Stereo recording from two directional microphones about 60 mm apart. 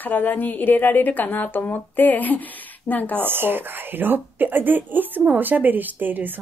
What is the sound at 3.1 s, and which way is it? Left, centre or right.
Speech, right.